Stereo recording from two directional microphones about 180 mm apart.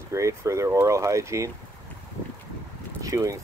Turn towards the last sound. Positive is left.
turn(degrees=-20)  # may be behind; listen again after turning